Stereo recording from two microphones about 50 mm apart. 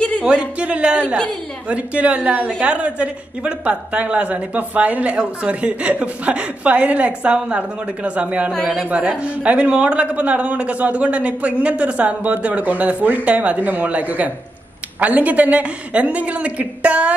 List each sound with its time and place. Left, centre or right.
0.2 s speech: right
8.5 s a woman's voice: centre
8.8 s speech: right